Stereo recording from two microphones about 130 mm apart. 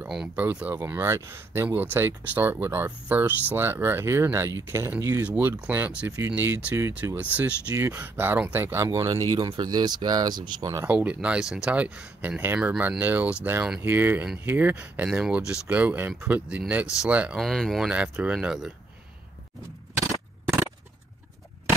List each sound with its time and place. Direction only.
0.4 s speech: 10° right (ahead or behind); by 10.9 s 25° right (ahead or behind)
10.9 s speech: 10° right (ahead or behind)